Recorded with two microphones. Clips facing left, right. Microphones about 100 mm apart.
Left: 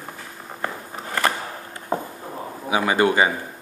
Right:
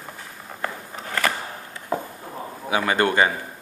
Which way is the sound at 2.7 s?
15° left (ahead or behind).